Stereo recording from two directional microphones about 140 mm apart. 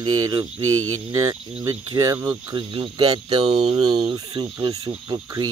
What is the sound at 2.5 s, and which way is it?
Speech, 35° right (ahead or behind).